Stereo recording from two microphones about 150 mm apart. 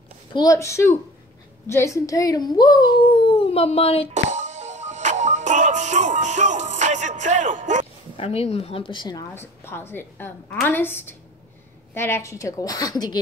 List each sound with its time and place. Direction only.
0.3 s a child's voice: 25° left (ahead or behind); by 4.1 s 40° left (ahead or behind)
4.1 s music: 50° right (ahead or behind)
8.2 s a woman's voice: 40° left (ahead or behind)
9.3 s a woman's voice: 15° left (ahead or behind)